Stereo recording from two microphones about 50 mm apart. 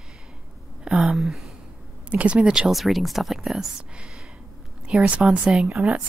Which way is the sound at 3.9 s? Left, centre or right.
Centre.